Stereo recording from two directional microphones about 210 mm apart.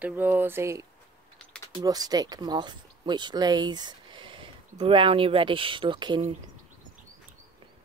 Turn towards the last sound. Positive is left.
turn(degrees=-20)  # may be behind; listen again after turning